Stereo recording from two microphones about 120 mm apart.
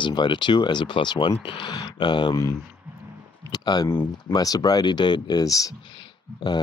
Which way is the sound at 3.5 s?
35° left (ahead or behind).